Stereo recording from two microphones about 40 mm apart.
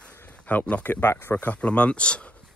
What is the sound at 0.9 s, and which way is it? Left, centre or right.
Speech, left.